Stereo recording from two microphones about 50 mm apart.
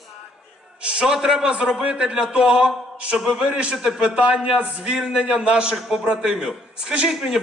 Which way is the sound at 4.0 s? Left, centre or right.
Right.